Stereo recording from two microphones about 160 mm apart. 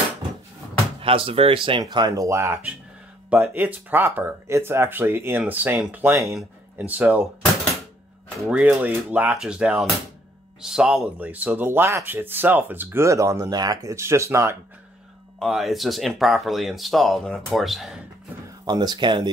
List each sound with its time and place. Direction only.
1.0 s speech: 35° right (ahead or behind); by 7.2 s 10° right (ahead or behind)
8.4 s speech: 5° right (ahead or behind)
15.3 s speech: centre (ahead or behind)
18.7 s speech: 25° right (ahead or behind)